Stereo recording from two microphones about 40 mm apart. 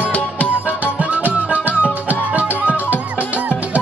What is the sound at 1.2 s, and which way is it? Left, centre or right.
Music, right.